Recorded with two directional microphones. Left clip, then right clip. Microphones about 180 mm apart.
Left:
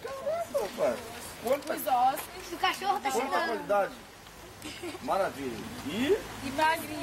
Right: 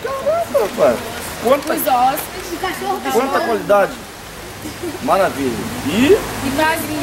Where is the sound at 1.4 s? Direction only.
Centre (ahead or behind).